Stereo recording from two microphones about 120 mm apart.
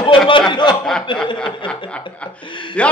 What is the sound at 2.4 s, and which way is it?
Speech, 40° left (ahead or behind).